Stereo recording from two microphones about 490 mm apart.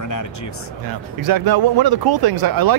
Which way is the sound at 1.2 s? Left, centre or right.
Right.